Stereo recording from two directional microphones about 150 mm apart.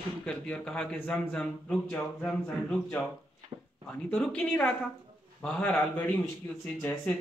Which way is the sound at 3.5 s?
30° right (ahead or behind).